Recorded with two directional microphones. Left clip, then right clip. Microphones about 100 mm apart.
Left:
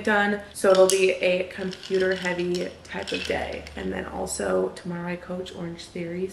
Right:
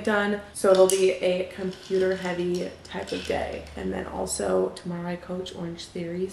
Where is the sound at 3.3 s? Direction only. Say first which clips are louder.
Even; 5° right (ahead or behind).